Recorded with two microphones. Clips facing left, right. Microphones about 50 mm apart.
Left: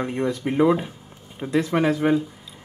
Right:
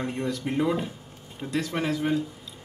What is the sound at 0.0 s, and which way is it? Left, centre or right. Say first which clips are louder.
Speech: left 5 dB; left.